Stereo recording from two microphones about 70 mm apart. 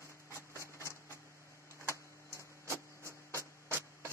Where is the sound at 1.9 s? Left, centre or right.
Left.